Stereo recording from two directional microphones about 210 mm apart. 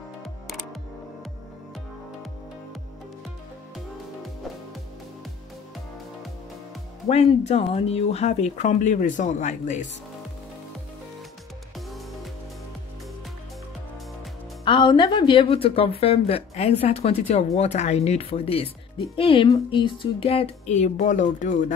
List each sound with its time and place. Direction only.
7.1 s speech: 30° left (ahead or behind)
14.6 s speech: 20° left (ahead or behind)